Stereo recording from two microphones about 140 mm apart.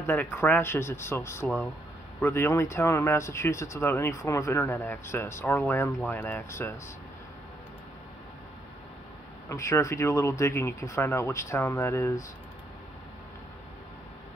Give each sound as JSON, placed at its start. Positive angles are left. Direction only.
{"t": 0.0, "sound": "speech", "side_deg": 15}
{"t": 9.5, "sound": "speech", "side_deg": 20}